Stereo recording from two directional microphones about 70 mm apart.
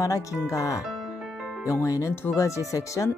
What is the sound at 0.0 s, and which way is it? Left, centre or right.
Speech, left.